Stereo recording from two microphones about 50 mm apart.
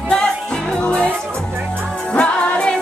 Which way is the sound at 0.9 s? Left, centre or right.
Left.